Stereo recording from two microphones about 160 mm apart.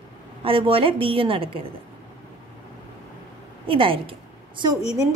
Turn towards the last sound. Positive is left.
turn(degrees=-25)  # may be behind; listen again after turning